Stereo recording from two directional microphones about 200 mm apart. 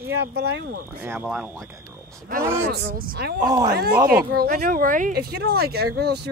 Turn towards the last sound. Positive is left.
turn(degrees=-55)  # may be behind; listen again after turning